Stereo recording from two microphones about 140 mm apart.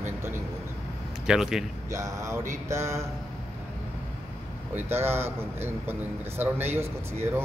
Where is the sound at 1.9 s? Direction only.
20° right (ahead or behind).